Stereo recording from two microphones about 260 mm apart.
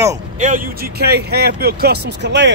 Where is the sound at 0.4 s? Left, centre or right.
Right.